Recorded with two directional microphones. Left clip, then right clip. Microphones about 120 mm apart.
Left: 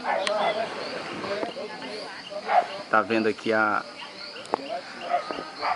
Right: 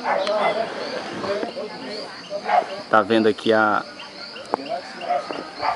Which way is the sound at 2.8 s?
10° right (ahead or behind).